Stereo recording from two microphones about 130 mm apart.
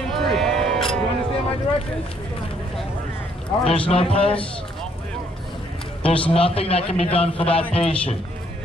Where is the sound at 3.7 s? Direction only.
45° left (ahead or behind).